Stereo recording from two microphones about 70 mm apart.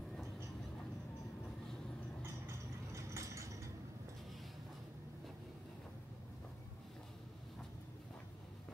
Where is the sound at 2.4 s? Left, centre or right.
Right.